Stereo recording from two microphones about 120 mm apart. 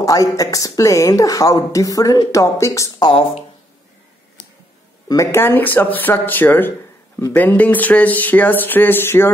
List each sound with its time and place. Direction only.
0.0 s speech: 30° left (ahead or behind)
3.1 s speech: 50° left (ahead or behind)
5.0 s speech: 25° left (ahead or behind)